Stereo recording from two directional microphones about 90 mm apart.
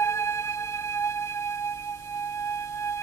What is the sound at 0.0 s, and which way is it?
Music, 30° left (ahead or behind).